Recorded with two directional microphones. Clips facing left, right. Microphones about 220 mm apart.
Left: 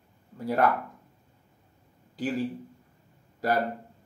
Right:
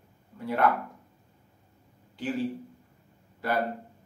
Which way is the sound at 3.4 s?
40° left (ahead or behind).